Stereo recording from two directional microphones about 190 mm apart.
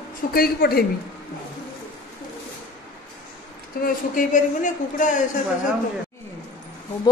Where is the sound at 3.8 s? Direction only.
45° left (ahead or behind).